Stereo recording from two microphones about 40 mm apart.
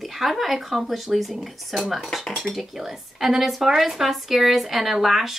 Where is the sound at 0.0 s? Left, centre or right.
Centre.